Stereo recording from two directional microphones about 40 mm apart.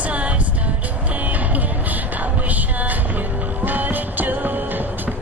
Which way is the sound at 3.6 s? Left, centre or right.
Right.